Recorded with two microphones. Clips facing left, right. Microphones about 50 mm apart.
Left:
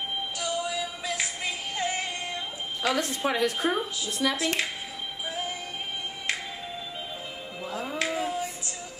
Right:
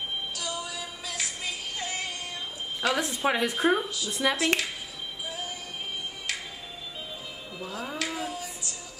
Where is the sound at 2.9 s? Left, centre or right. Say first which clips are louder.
Right 1 dB; centre.